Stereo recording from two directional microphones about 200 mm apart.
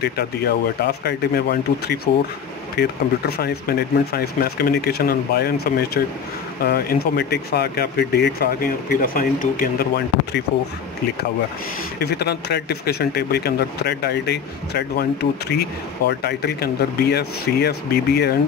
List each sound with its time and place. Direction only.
1.0 s speech: 50° left (ahead or behind)
12.0 s speech: 55° left (ahead or behind)